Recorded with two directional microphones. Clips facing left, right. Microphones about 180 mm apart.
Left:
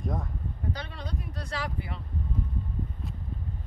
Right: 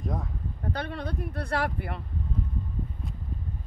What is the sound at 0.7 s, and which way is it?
Speech, 55° right (ahead or behind).